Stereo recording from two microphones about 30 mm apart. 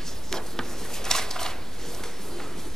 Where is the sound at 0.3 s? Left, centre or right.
Centre.